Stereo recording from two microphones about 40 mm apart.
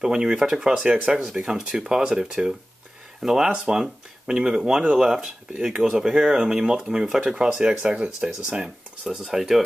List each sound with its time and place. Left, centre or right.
0.0 s speech: centre
1.2 s speech: centre
3.4 s speech: right
9.3 s speech: centre